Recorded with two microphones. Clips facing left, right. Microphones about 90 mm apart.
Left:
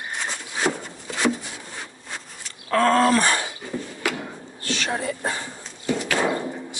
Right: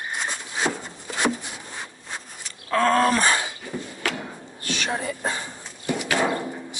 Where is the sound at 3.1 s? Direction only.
20° right (ahead or behind).